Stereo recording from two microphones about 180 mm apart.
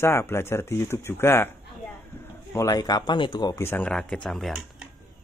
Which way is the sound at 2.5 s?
15° left (ahead or behind).